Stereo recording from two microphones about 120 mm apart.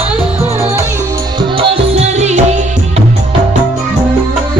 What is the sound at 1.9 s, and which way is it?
Music, 65° right (ahead or behind).